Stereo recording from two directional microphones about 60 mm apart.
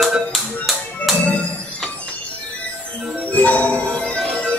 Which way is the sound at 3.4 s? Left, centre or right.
Left.